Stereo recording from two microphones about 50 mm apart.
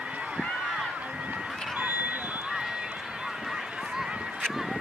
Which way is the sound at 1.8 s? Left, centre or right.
Right.